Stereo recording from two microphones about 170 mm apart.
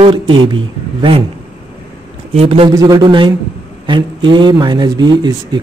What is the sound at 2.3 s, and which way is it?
Speech, 35° right (ahead or behind).